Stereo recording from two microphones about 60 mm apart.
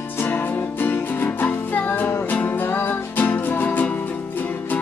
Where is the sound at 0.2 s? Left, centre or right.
Left.